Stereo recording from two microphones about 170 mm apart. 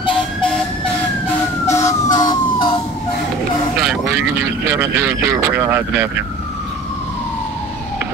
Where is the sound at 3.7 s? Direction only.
Centre (ahead or behind).